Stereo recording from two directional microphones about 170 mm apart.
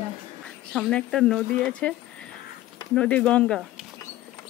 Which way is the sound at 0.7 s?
Centre (ahead or behind).